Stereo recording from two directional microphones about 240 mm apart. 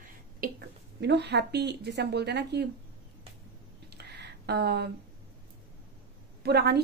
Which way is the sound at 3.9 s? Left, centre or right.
Right.